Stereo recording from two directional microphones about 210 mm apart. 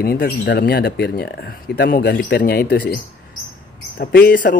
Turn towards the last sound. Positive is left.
turn(degrees=45)  # may be behind; listen again after turning